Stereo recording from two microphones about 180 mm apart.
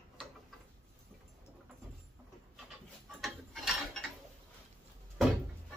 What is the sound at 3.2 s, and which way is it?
Ratchet, centre (ahead or behind).